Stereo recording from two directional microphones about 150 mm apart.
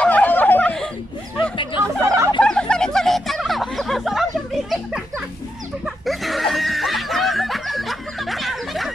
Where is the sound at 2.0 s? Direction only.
20° right (ahead or behind).